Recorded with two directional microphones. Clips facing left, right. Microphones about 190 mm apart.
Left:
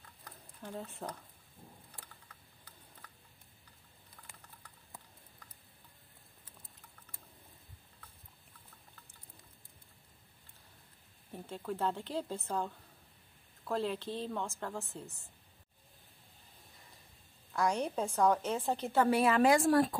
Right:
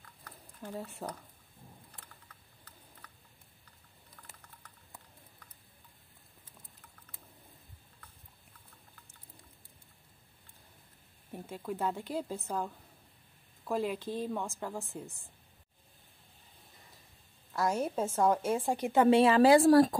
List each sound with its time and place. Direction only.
0.6 s speech: 5° right (ahead or behind)
11.3 s a woman's voice: 10° right (ahead or behind)
17.5 s a woman's voice: 5° right (ahead or behind); by 20.0 s 40° right (ahead or behind)